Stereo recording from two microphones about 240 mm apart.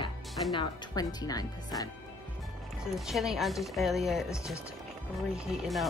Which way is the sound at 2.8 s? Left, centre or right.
Centre.